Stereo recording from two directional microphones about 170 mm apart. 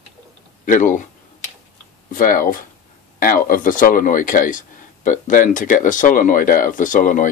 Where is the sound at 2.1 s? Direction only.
55° left (ahead or behind).